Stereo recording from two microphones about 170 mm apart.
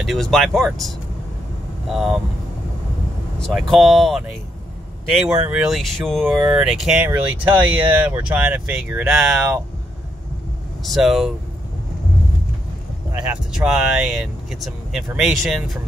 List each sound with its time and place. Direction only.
0.0 s speech: centre (ahead or behind)
3.3 s speech: 5° left (ahead or behind)
10.8 s speech: centre (ahead or behind)
13.1 s speech: 5° right (ahead or behind)